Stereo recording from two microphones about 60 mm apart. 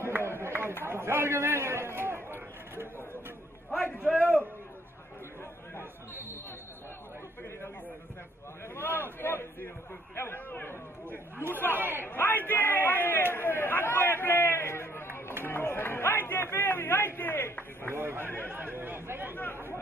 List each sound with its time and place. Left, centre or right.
0.0 s a sound: right
0.4 s chatter: right
0.8 s a man's voice: right
4.0 s a man's voice: right
5.8 s chatter: right
8.7 s a man's voice: left
11.7 s a man's voice: right
12.1 s a sound: left
17.9 s speech: right
18.2 s a man's voice: left
18.5 s speech: right
19.3 s a man's voice: left